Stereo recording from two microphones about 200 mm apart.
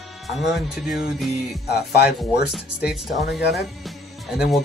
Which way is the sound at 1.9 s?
55° left (ahead or behind).